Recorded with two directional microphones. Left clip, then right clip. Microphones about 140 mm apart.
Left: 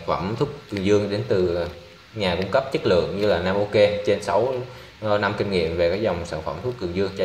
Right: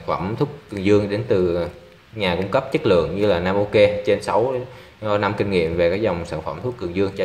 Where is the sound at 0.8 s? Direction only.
30° right (ahead or behind).